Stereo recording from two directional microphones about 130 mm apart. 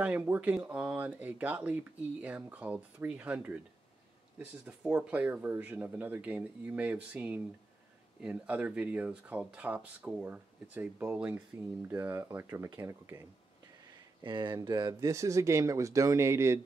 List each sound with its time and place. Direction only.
0.0 s speech: 10° right (ahead or behind)
4.6 s speech: 10° right (ahead or behind)
14.2 s speech: 35° right (ahead or behind); by 16.6 s 20° right (ahead or behind)